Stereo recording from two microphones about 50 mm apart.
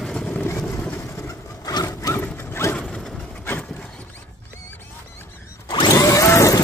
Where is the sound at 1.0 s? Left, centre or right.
Left.